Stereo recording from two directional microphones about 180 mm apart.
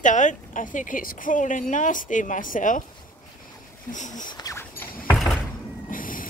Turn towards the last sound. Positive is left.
turn(degrees=50)  # may be behind; listen again after turning